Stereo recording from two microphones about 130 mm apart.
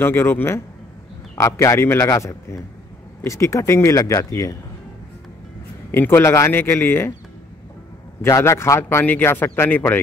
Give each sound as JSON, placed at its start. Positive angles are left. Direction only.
{"t": 0.0, "sound": "a man's voice", "side_deg": 15}
{"t": 5.9, "sound": "speech", "side_deg": 15}
{"t": 8.2, "sound": "speech", "side_deg": 25}